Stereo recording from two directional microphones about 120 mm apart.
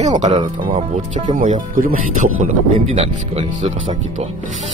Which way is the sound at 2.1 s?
90° right.